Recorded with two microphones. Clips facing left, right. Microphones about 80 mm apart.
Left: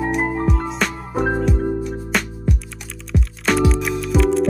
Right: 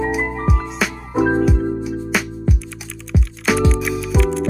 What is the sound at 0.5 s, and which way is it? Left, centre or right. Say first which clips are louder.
Music: even; centre.